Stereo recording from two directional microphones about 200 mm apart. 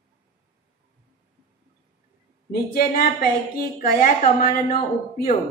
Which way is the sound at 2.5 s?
50° left (ahead or behind).